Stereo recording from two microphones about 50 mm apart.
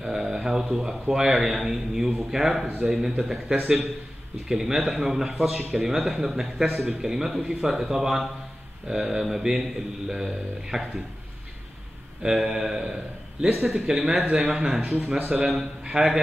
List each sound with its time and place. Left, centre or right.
0.0 s a man's voice: centre
12.2 s a man's voice: centre